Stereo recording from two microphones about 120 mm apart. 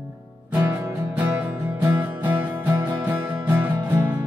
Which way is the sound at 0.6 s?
15° right (ahead or behind).